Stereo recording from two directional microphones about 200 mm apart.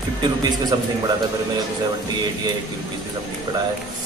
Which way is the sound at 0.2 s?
20° right (ahead or behind).